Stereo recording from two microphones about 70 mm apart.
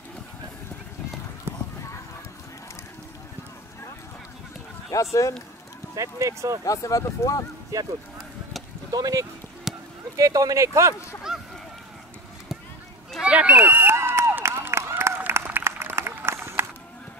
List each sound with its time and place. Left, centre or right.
4.9 s speech: left
5.9 s speech: right
6.6 s speech: left
7.7 s speech: right
8.9 s speech: right
9.7 s a sound: centre
10.1 s speech: right
11.3 s a sound: centre
13.2 s speech: centre
13.6 s a sound: right
16.3 s crowd: right